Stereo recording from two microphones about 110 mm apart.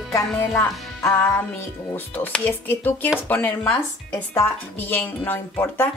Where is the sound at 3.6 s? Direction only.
5° left (ahead or behind).